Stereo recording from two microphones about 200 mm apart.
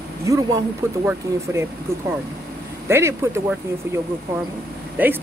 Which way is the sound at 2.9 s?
15° right (ahead or behind).